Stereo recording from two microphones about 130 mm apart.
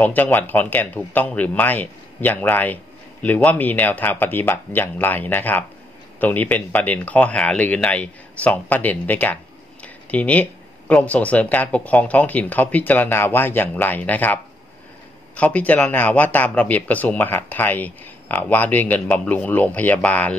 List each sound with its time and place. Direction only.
0.0 s speech: 15° left (ahead or behind)